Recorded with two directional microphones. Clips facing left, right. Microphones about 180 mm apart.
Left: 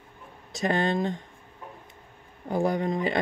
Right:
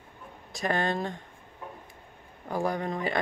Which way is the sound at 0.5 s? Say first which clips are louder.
Left 3 dB; 25° left (ahead or behind).